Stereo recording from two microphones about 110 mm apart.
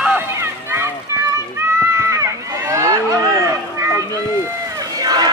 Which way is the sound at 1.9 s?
30° right (ahead or behind).